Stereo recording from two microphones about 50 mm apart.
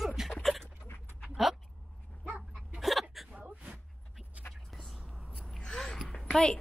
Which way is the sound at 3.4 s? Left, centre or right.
Right.